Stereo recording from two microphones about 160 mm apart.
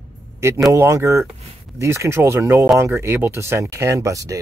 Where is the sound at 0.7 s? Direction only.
20° right (ahead or behind).